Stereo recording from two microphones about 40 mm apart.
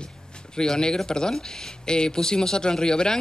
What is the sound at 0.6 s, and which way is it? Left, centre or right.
Speech, centre.